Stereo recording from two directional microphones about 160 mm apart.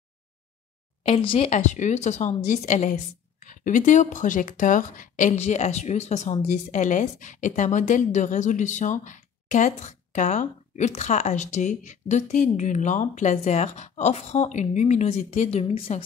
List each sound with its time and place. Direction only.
1.0 s a woman's voice: 35° left (ahead or behind)